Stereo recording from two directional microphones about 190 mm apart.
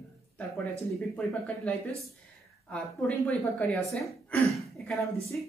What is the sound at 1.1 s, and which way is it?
A woman's voice, 5° left (ahead or behind).